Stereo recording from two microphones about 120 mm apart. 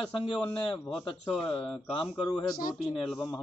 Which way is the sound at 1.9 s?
50° left (ahead or behind).